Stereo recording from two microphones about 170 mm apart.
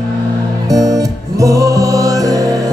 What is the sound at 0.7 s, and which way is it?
Music, 20° right (ahead or behind).